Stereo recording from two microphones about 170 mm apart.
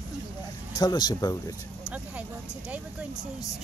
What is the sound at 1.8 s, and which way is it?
Vehicle, 10° right (ahead or behind).